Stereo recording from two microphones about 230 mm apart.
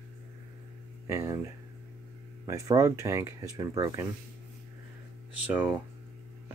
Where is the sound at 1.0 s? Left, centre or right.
Centre.